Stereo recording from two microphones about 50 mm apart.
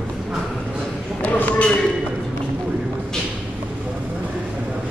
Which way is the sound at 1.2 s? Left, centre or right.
Left.